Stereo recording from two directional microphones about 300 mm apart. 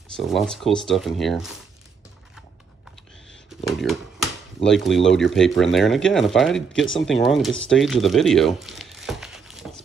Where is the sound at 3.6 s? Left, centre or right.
Centre.